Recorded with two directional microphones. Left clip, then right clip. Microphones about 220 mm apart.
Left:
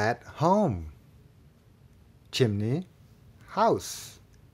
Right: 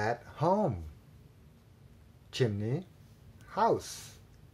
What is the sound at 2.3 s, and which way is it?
Speech, 30° left (ahead or behind).